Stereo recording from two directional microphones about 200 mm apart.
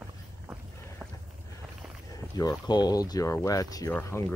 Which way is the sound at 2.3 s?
20° left (ahead or behind).